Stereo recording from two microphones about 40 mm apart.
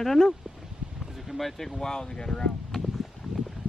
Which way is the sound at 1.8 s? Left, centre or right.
Centre.